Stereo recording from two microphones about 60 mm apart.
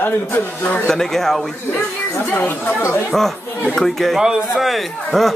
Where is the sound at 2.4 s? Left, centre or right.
Left.